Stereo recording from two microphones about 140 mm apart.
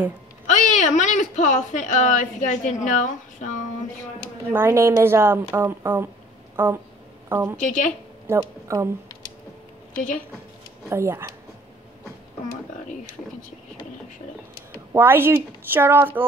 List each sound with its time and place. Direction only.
0.5 s speech: 65° left (ahead or behind)
4.5 s a woman's voice: 15° right (ahead or behind)
7.6 s speech: 65° left (ahead or behind)
8.3 s speech: 20° right (ahead or behind)
10.9 s speech: 20° right (ahead or behind)
15.0 s a woman's voice: 15° right (ahead or behind)